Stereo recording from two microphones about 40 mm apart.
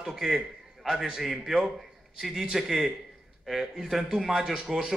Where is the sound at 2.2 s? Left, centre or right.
Centre.